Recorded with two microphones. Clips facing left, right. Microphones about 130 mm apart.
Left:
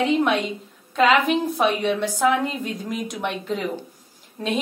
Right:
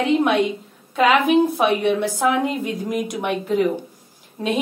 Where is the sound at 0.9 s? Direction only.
10° right (ahead or behind).